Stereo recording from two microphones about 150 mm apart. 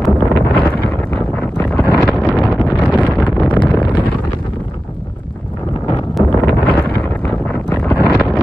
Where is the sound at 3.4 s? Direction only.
30° left (ahead or behind).